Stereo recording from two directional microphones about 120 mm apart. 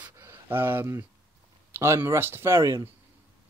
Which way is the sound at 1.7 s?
20° right (ahead or behind).